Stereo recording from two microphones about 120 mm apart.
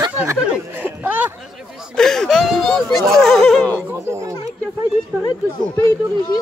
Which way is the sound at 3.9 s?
25° right (ahead or behind).